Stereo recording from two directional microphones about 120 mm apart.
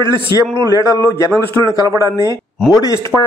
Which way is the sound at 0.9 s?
20° left (ahead or behind).